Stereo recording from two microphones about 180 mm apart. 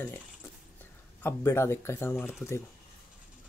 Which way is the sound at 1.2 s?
10° left (ahead or behind).